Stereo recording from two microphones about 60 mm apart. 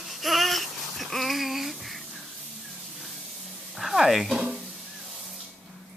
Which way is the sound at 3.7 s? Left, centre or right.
Centre.